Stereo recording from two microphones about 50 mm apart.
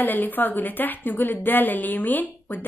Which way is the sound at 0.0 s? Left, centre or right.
Left.